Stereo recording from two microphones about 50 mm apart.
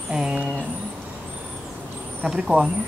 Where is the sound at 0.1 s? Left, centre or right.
Centre.